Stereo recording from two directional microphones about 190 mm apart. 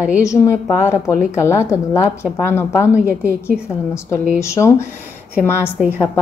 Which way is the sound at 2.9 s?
10° right (ahead or behind).